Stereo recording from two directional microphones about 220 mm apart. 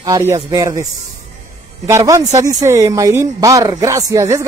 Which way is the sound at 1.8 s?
15° right (ahead or behind).